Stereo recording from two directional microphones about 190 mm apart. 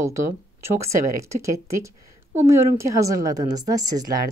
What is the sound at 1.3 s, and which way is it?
Speech, 15° right (ahead or behind).